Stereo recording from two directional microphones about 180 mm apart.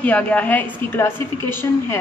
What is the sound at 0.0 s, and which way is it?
A woman's voice, 10° left (ahead or behind).